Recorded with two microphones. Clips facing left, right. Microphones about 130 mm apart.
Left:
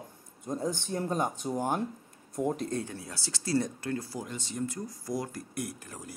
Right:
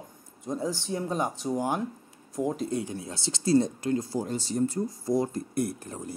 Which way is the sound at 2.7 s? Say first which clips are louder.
Right 4 dB; 20° right (ahead or behind).